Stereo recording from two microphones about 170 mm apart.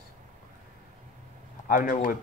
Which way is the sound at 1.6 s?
55° left (ahead or behind).